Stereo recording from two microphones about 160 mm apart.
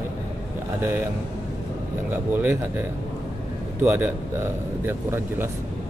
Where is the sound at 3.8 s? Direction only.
10° right (ahead or behind).